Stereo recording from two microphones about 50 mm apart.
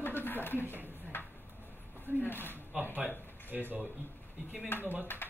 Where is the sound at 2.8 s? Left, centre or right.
Right.